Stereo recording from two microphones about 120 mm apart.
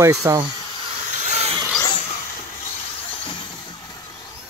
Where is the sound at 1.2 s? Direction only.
65° right (ahead or behind).